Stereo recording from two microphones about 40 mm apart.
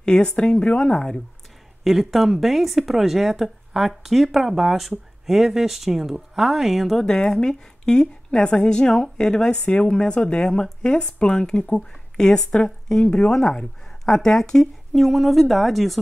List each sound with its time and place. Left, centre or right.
0.0 s a woman's voice: left
0.9 s a woman's voice: centre
1.9 s speech: centre
7.2 s a woman's voice: centre
13.0 s a woman's voice: left
13.3 s speech: centre
14.9 s speech: centre